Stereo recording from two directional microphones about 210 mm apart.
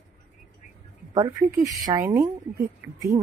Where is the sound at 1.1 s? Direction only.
20° right (ahead or behind).